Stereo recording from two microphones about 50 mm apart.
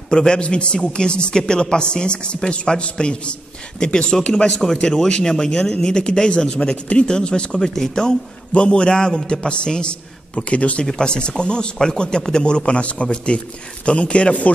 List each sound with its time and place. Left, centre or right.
0.1 s speech: centre
10.9 s speech: centre